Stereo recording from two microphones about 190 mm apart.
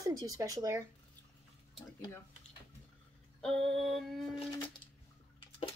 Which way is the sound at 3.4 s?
5° left (ahead or behind).